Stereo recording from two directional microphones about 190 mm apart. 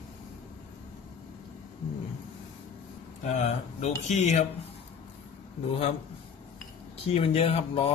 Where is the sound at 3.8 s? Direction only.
35° left (ahead or behind).